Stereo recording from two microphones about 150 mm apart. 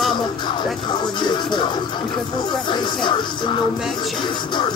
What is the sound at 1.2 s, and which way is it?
Speech, 30° left (ahead or behind).